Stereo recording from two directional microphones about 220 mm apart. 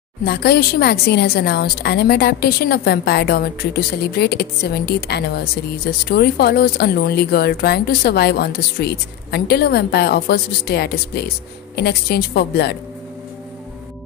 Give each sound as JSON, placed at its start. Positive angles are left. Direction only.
{"t": 0.2, "sound": "speech", "side_deg": 45}